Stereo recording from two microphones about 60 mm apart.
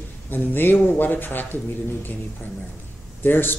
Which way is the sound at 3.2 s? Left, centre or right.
Left.